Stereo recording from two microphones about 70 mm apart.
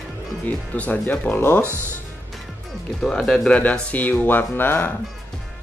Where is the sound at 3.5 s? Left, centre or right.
Centre.